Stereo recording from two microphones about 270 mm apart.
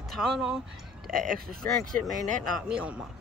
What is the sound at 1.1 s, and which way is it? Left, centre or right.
Speech, right.